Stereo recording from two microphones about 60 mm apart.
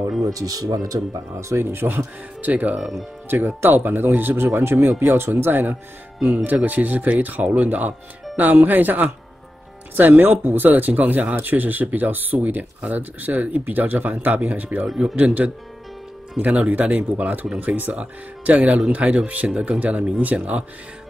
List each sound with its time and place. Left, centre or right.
0.3 s speech: right